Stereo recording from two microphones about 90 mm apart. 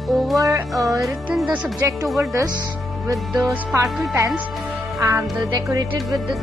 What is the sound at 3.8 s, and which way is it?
Music, centre (ahead or behind).